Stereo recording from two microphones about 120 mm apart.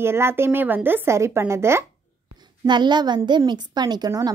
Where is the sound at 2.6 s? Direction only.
40° right (ahead or behind).